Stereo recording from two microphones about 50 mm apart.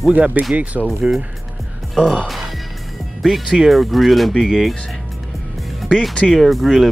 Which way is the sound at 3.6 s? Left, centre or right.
Centre.